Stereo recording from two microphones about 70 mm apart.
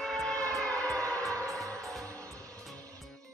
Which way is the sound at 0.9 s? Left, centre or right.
Right.